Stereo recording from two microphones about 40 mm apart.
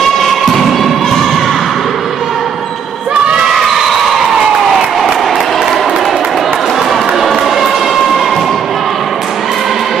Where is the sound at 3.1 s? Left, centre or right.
Right.